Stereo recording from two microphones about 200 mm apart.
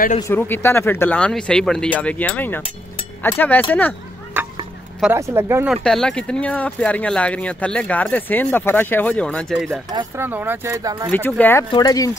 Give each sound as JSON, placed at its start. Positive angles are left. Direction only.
{"t": 0.3, "sound": "speech", "side_deg": 10}
{"t": 5.0, "sound": "speech", "side_deg": -10}
{"t": 5.9, "sound": "speech", "side_deg": 5}
{"t": 9.8, "sound": "speech", "side_deg": -15}
{"t": 11.1, "sound": "speech", "side_deg": 10}